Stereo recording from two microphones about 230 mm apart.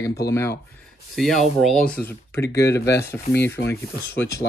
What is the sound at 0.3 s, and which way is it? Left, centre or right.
Speech, centre.